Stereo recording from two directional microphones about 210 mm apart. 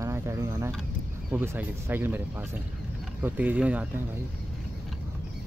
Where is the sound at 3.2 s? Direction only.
5° right (ahead or behind).